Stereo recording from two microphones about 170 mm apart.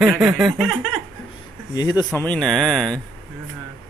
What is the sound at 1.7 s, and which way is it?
Speech, 20° left (ahead or behind).